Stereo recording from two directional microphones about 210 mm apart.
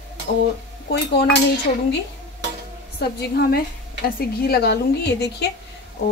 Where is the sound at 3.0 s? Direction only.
50° left (ahead or behind).